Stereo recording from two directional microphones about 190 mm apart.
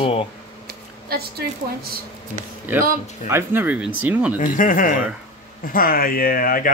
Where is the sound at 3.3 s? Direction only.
10° right (ahead or behind).